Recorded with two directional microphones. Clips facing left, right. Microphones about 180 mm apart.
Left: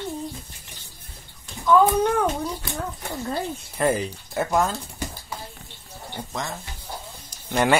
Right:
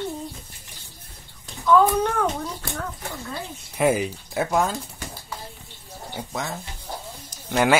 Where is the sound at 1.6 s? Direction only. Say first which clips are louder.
Even; 10° left (ahead or behind).